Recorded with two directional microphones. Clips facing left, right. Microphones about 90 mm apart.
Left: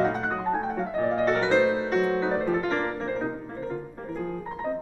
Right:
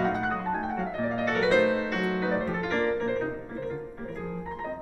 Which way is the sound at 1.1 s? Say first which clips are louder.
Left 2 dB; 30° left (ahead or behind).